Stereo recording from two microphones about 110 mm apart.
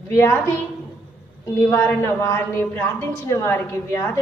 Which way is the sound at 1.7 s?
25° left (ahead or behind).